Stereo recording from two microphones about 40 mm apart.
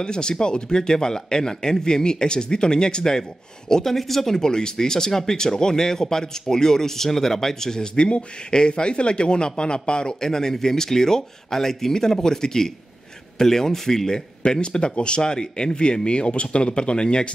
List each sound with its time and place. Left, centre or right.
0.0 s speech: left